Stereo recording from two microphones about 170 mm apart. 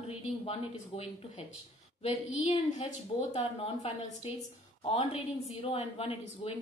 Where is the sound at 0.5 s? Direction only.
35° left (ahead or behind).